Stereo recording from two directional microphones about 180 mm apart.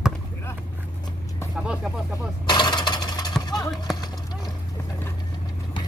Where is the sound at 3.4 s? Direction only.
20° left (ahead or behind).